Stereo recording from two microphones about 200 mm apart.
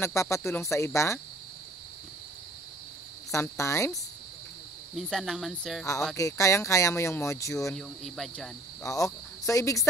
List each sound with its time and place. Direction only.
0.0 s speech: 15° left (ahead or behind)
3.3 s speech: 15° left (ahead or behind)
4.9 s speech: centre (ahead or behind)
6.1 s speech: 15° left (ahead or behind)
7.7 s speech: 5° left (ahead or behind)
8.8 s speech: 15° left (ahead or behind)